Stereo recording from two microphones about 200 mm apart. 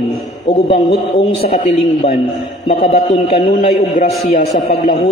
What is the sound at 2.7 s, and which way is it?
A man's voice, 35° left (ahead or behind).